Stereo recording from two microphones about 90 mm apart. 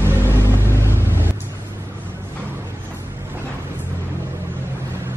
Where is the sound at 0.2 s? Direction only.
30° left (ahead or behind).